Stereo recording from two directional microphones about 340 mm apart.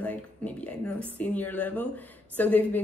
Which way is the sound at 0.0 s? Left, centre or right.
Centre.